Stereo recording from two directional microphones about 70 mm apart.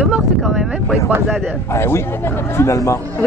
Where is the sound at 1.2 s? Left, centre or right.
Centre.